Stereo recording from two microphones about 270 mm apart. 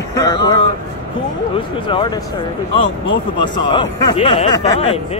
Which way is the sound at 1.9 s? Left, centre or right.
Centre.